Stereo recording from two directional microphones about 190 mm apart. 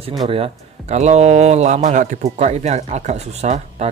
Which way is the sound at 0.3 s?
35° right (ahead or behind).